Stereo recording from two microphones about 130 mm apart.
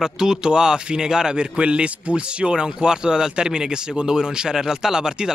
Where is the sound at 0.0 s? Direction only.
5° right (ahead or behind).